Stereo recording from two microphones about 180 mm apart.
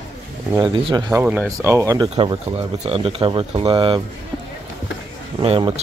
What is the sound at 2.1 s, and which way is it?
Speech, 30° right (ahead or behind).